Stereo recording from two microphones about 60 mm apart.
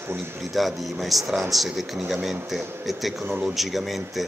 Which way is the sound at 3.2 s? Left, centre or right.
Right.